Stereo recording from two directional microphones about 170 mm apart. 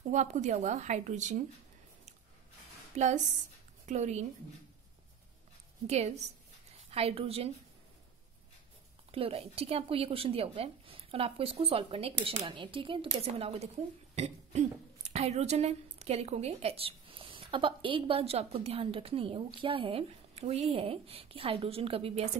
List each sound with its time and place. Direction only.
0.1 s a woman's voice: 45° right (ahead or behind)
2.9 s a woman's voice: 40° right (ahead or behind)
5.9 s speech: 40° right (ahead or behind)
9.1 s speech: 35° right (ahead or behind)